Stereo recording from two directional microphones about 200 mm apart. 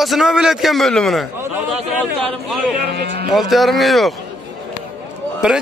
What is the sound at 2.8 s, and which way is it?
Speech, 55° right (ahead or behind).